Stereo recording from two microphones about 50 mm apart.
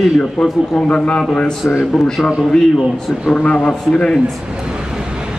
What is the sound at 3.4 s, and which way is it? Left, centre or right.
Speech, left.